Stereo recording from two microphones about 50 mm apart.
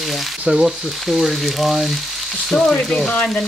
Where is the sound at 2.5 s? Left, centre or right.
Left.